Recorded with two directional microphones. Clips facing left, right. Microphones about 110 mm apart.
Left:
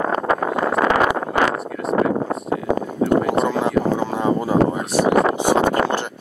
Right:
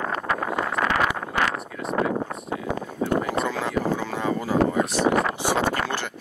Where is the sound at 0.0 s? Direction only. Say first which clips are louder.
Left 7 dB; 30° left (ahead or behind).